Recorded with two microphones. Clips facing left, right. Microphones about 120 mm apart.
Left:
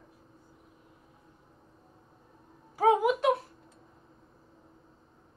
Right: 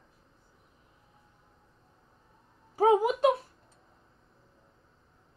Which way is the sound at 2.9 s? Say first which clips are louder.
Right 2 dB; 30° right (ahead or behind).